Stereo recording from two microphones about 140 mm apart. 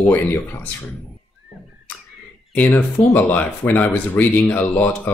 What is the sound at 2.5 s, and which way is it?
Speech, 10° left (ahead or behind).